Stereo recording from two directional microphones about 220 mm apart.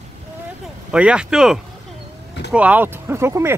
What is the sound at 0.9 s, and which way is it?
Speech, 5° right (ahead or behind).